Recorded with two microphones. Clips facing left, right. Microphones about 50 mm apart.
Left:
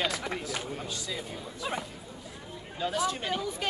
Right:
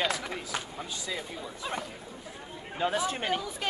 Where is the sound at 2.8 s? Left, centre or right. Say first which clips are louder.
Right 1 dB; right.